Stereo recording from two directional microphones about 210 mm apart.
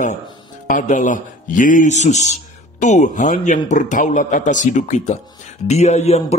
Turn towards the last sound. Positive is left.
turn(degrees=30)  # may be behind; listen again after turning